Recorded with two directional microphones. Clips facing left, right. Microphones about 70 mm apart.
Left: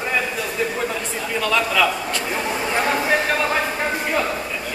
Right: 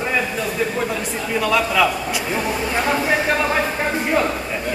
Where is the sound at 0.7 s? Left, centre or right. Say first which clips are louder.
Right 2 dB; centre.